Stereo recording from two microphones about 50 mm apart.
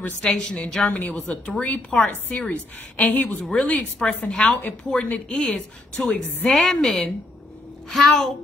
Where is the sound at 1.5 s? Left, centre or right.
Left.